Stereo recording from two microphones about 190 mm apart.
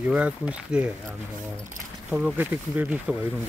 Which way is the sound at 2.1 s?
10° right (ahead or behind).